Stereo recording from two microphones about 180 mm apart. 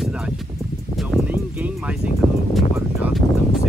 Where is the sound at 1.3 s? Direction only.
10° right (ahead or behind).